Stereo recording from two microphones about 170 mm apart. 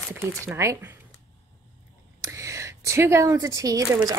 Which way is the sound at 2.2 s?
20° right (ahead or behind).